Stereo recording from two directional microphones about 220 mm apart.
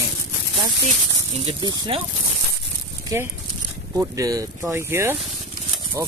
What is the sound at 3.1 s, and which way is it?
Speech, 15° right (ahead or behind).